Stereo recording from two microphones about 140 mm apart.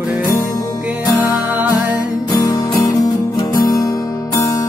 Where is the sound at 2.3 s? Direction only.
25° left (ahead or behind).